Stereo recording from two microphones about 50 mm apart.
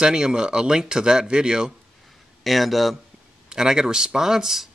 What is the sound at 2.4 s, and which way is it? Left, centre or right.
Speech, centre.